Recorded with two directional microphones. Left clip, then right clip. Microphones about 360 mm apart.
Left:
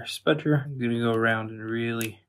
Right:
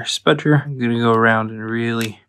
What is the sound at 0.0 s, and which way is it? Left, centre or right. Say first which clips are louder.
Speech: right 8 dB; centre.